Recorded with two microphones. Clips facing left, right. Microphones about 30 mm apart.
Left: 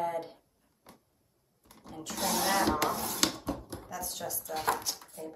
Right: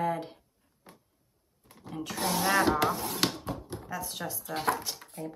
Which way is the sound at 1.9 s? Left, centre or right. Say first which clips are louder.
Right 4 dB; right.